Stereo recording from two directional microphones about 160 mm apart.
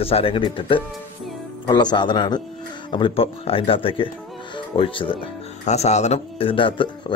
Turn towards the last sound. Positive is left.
turn(degrees=30)  # may be behind; listen again after turning